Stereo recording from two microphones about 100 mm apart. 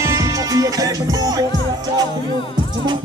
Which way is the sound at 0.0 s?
30° right (ahead or behind).